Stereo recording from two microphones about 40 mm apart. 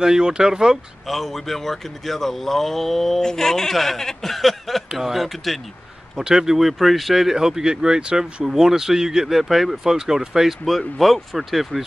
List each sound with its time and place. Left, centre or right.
0.0 s speech: centre
1.0 s speech: centre
6.1 s speech: centre
8.5 s speech: centre
11.0 s speech: centre